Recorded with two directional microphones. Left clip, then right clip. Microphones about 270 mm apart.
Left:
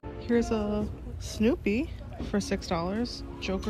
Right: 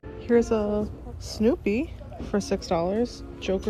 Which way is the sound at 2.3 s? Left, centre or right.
Centre.